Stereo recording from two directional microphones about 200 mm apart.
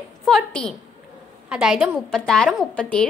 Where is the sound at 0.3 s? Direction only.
5° left (ahead or behind).